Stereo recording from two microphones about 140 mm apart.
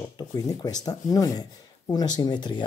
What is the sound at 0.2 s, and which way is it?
Speech, 25° left (ahead or behind).